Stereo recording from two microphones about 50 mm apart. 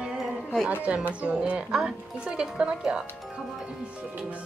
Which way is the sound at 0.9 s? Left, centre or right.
Right.